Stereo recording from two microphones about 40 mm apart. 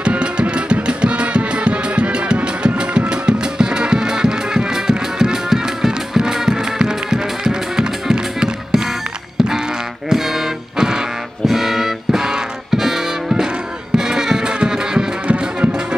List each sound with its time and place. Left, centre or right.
0.0 s music: right